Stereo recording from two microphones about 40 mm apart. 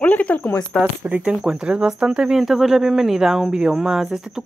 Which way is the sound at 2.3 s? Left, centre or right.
Centre.